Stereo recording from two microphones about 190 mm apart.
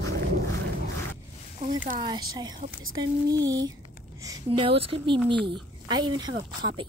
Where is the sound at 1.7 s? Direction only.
45° right (ahead or behind).